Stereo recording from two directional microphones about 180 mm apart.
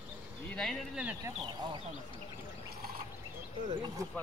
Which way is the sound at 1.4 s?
25° right (ahead or behind).